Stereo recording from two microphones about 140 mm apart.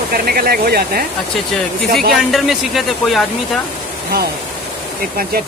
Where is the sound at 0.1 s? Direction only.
90° right.